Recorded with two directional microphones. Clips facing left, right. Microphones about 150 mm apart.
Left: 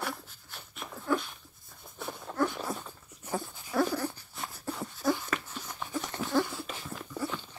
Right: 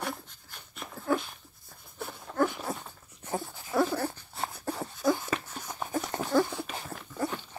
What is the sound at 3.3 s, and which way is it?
Dog, 25° right (ahead or behind).